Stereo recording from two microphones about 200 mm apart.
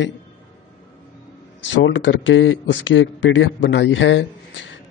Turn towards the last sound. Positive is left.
turn(degrees=65)  # may be behind; listen again after turning